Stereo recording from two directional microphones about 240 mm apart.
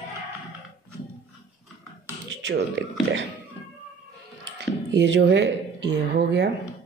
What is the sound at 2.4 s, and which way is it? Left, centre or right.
Speech, right.